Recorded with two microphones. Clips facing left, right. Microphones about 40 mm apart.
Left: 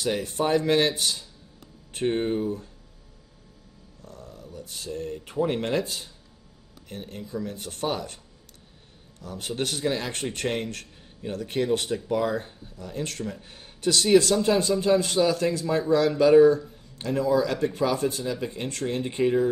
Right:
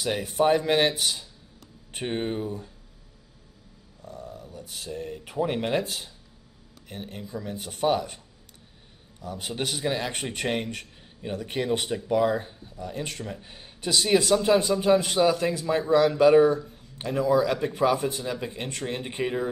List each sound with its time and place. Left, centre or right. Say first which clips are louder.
0.0 s speech: right 2 dB; centre
4.0 s speech: right 4 dB; centre
9.2 s speech: left 1 dB; centre